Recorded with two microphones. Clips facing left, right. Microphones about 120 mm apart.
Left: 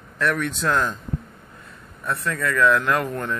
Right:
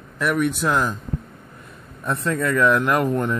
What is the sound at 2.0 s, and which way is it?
Speech, 20° right (ahead or behind).